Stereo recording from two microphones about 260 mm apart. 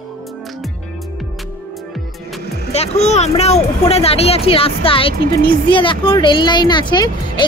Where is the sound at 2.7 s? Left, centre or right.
Left.